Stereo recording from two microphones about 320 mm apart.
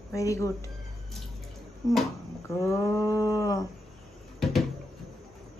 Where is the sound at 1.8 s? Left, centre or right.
Centre.